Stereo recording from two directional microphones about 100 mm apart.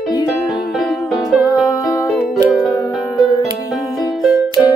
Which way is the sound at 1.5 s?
35° left (ahead or behind).